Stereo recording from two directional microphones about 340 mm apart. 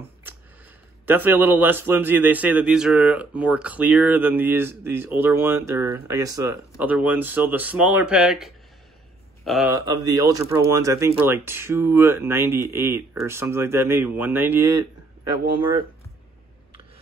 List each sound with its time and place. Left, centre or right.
1.0 s a man's voice: centre